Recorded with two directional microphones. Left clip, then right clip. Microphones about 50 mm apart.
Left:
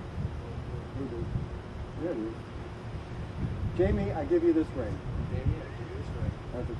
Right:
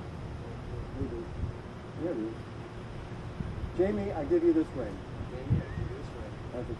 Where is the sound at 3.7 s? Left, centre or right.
Right.